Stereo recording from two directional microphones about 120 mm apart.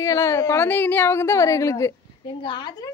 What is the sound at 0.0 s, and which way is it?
A woman's voice, 25° left (ahead or behind).